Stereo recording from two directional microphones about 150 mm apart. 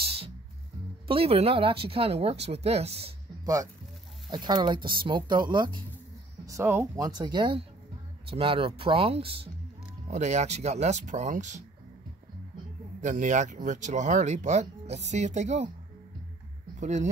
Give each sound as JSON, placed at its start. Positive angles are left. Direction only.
{"t": 0.0, "sound": "music", "side_deg": -40}
{"t": 1.0, "sound": "speech", "side_deg": -40}
{"t": 4.3, "sound": "speech", "side_deg": -30}
{"t": 6.4, "sound": "speech", "side_deg": -20}
{"t": 10.0, "sound": "speech", "side_deg": -50}
{"t": 13.0, "sound": "speech", "side_deg": -55}
{"t": 16.8, "sound": "speech", "side_deg": -55}